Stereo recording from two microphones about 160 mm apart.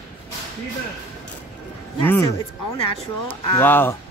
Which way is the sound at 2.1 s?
15° left (ahead or behind).